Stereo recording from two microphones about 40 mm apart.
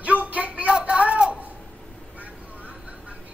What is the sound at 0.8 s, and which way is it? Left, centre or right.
Speech, right.